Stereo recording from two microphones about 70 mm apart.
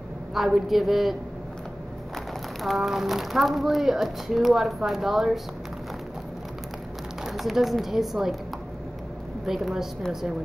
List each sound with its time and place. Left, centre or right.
0.3 s speech: centre
2.6 s speech: centre
7.2 s speech: centre
9.5 s speech: centre